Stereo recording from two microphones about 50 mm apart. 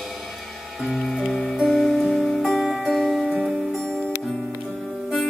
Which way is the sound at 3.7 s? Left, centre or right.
Centre.